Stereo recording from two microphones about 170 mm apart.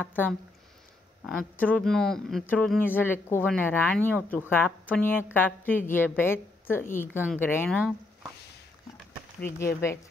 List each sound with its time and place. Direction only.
0.0 s a woman's voice: 10° left (ahead or behind)
1.6 s a woman's voice: 5° left (ahead or behind)
9.4 s a woman's voice: 15° left (ahead or behind)